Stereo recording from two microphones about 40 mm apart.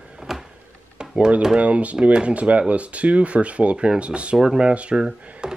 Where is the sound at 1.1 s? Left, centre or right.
Right.